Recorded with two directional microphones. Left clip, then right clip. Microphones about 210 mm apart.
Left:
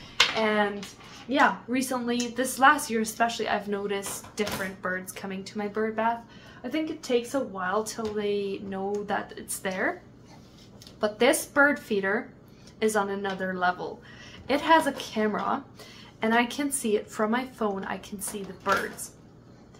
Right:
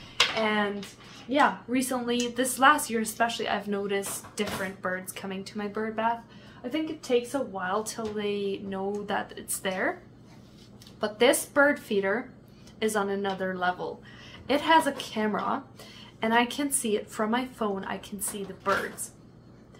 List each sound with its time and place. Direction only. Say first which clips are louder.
0.4 s speech: left 2 dB; centre (ahead or behind)
11.0 s speech: even; centre (ahead or behind)